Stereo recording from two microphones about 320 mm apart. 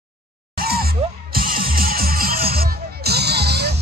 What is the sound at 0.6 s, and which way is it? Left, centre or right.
Music, right.